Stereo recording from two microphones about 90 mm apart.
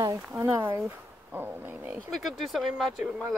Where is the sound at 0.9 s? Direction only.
25° right (ahead or behind).